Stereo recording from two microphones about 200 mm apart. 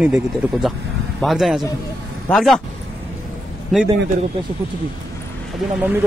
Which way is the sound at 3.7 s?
Centre (ahead or behind).